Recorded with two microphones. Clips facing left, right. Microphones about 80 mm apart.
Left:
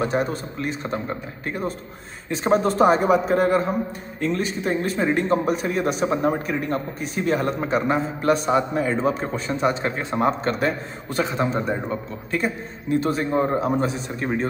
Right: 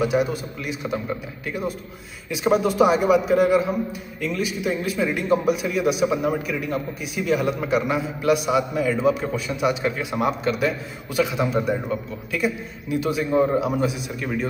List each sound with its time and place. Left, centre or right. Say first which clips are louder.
0.0 s a man's voice: right 2 dB; left